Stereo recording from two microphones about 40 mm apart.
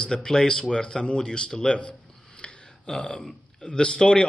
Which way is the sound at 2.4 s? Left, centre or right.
Centre.